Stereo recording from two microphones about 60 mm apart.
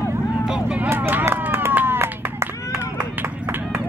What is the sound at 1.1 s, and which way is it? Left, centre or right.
Run, right.